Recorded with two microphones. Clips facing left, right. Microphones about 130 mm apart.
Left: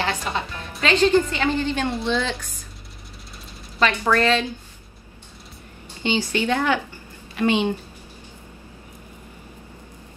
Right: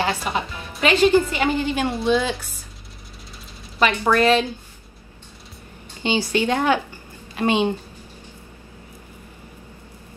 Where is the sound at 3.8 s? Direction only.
15° right (ahead or behind).